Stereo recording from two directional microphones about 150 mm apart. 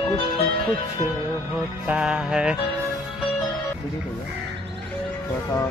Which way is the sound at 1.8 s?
5° right (ahead or behind).